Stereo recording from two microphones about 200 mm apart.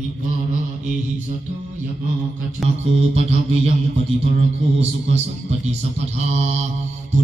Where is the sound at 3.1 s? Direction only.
30° right (ahead or behind).